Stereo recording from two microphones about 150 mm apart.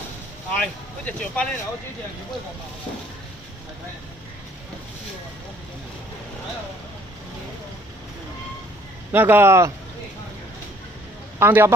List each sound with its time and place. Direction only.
0.5 s speech: 10° left (ahead or behind)
9.1 s speech: 15° right (ahead or behind)
11.3 s speech: 15° right (ahead or behind)